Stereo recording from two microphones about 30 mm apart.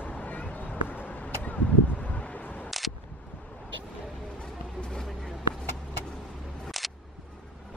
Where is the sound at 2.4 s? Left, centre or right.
Left.